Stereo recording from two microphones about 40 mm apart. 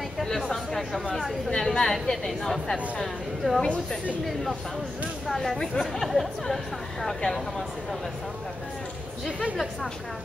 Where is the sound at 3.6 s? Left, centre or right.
Centre.